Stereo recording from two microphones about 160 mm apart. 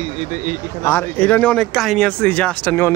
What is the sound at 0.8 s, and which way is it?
Speech, 15° left (ahead or behind).